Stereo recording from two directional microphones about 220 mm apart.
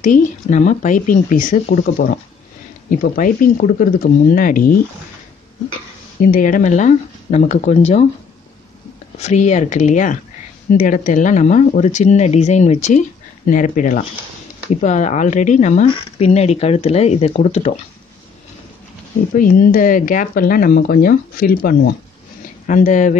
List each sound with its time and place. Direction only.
0.0 s speech: 35° left (ahead or behind)
6.2 s speech: 35° left (ahead or behind)
9.2 s speech: 30° left (ahead or behind)
19.3 s speech: 40° left (ahead or behind)